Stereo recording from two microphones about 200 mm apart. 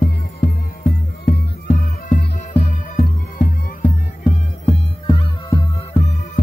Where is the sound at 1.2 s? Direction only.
50° left (ahead or behind).